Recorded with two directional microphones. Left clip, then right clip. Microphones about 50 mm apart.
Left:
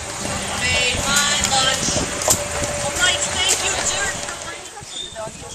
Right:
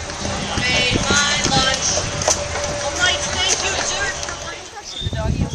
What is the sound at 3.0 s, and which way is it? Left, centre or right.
Music, right.